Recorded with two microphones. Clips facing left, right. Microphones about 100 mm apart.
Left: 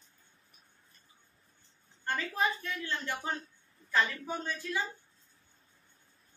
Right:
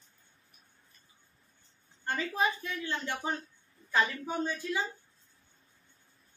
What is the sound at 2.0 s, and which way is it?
A woman's voice, 15° right (ahead or behind).